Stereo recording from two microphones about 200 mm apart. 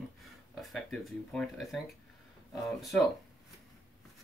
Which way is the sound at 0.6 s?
Centre (ahead or behind).